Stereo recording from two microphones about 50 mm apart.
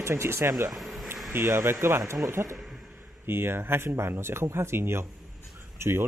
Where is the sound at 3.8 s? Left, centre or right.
Right.